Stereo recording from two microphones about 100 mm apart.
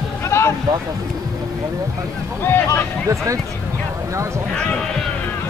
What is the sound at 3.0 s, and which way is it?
Speech, 35° right (ahead or behind).